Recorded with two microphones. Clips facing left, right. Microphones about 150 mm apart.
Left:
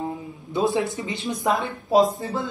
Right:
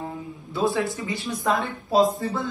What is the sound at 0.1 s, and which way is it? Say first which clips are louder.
A man's voice: left 4 dB; 20° left (ahead or behind).